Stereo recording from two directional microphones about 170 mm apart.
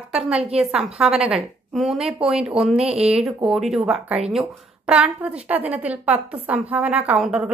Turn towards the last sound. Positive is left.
turn(degrees=-5)  # may be behind; listen again after turning